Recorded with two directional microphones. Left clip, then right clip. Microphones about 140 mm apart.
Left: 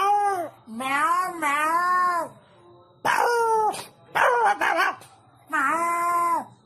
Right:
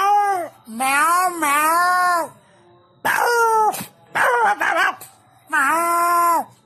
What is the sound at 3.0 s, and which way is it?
Dog, 15° right (ahead or behind).